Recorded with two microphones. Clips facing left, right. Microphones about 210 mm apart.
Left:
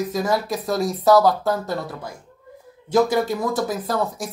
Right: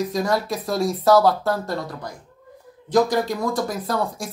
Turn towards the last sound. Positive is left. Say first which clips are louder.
# left 1 dB
turn(degrees=0)  # may be behind; listen again after turning